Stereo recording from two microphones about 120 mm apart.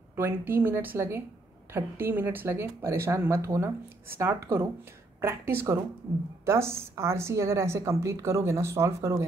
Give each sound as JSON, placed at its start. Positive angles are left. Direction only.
{"t": 0.1, "sound": "a woman's voice", "side_deg": -20}